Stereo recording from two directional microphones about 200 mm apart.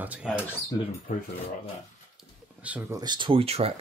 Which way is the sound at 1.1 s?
40° left (ahead or behind).